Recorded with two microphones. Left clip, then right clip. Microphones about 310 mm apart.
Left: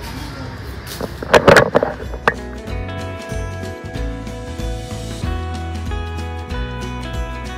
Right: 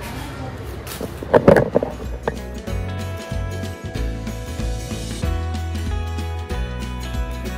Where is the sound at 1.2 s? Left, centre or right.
Right.